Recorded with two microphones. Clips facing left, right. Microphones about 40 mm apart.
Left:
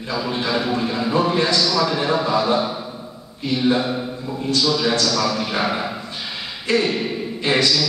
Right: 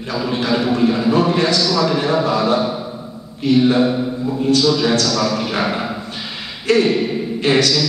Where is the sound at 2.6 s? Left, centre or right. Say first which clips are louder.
Right 3 dB; centre.